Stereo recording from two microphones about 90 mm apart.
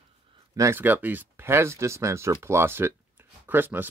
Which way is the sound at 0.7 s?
20° right (ahead or behind).